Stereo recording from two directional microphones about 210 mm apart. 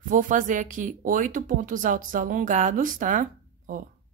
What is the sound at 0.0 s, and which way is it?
Speech, 40° right (ahead or behind).